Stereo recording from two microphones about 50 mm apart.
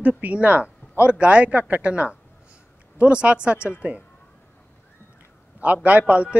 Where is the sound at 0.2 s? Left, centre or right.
Right.